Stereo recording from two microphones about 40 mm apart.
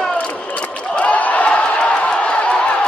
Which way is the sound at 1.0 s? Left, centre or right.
Left.